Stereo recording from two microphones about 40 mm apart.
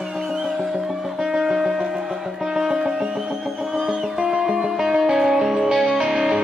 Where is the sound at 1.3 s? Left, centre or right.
Centre.